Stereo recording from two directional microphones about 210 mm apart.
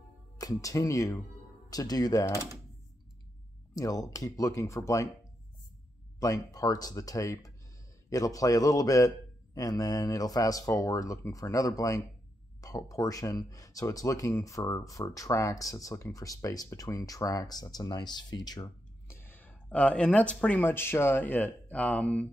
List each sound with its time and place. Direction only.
0.4 s speech: 15° left (ahead or behind)
3.7 s speech: 15° left (ahead or behind)
6.1 s speech: 15° left (ahead or behind)